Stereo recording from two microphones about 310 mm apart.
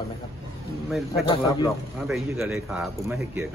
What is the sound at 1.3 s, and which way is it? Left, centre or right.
Speech, centre.